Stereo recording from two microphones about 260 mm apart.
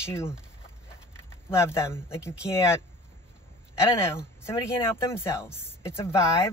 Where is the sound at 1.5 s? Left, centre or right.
Centre.